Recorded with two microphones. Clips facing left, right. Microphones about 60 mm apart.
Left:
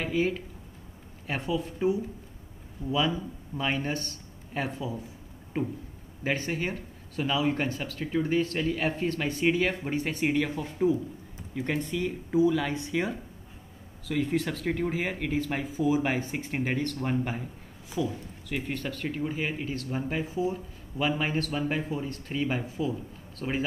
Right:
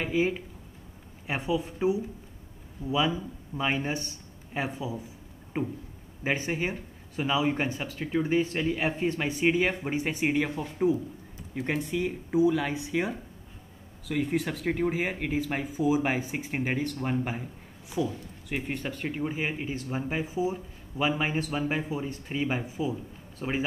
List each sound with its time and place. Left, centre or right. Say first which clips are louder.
0.0 s speech: right 1 dB; centre